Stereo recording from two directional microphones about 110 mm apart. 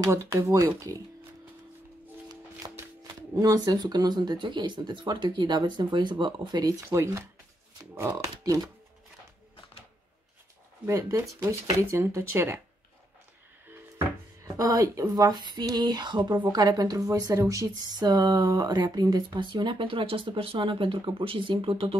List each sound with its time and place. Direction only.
0.0 s speech: 30° right (ahead or behind)
2.6 s a sound: 40° right (ahead or behind)
3.0 s speech: 35° right (ahead or behind)
6.9 s speech: 25° right (ahead or behind)
10.9 s speech: 30° right (ahead or behind)
14.6 s speech: 30° right (ahead or behind); by 21.9 s 55° right (ahead or behind)